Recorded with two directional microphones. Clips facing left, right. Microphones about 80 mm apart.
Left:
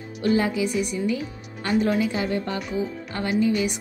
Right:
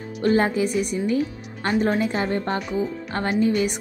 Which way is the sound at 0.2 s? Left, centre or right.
Right.